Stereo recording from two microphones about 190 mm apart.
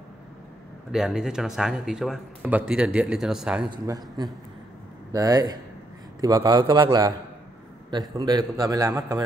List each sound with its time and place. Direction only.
0.9 s speech: centre (ahead or behind)
3.7 s a man's voice: 20° right (ahead or behind)